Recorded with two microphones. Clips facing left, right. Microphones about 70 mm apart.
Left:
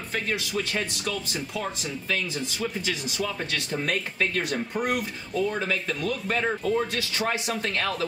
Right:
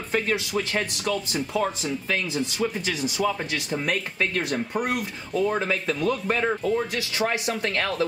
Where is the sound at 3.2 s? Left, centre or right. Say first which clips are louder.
Right 4 dB; centre.